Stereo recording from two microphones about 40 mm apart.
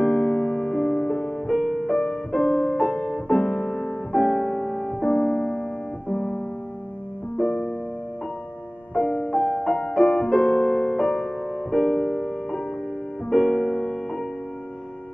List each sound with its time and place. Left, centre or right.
0.0 s music: centre
1.5 s music: centre; by 3.9 s left
4.1 s music: centre
7.3 s music: centre
8.9 s music: centre
9.8 s music: centre
13.3 s music: centre